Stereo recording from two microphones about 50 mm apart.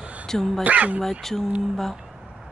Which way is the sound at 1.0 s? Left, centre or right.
Centre.